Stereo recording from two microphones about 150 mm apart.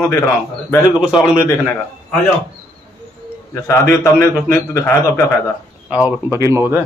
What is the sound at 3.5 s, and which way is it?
A man's voice, 15° left (ahead or behind).